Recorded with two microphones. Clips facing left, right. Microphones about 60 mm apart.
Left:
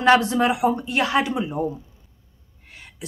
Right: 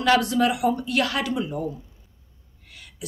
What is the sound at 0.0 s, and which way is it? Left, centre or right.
Speech, left.